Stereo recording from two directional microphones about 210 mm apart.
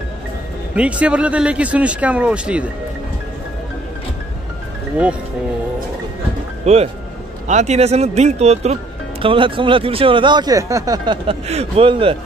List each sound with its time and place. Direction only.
0.7 s speech: 5° right (ahead or behind)
6.6 s speech: 30° right (ahead or behind)